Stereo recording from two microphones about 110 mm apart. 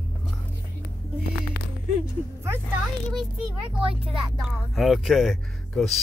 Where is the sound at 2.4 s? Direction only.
25° right (ahead or behind).